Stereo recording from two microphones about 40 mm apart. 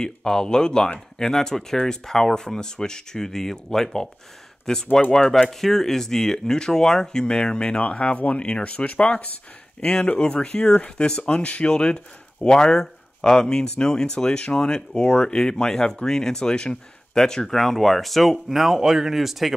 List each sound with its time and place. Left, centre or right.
0.0 s speech: centre
15.0 s speech: left
15.2 s speech: centre